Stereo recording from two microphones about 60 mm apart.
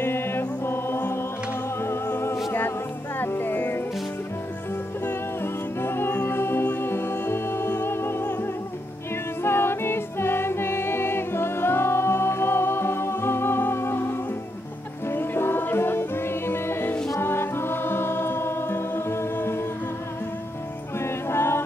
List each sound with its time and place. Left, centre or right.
0.0 s music: left
5.0 s music: left
21.0 s music: left